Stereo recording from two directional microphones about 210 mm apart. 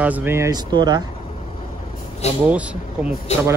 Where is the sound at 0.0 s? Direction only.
10° right (ahead or behind).